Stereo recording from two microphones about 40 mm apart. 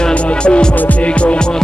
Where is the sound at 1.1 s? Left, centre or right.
Left.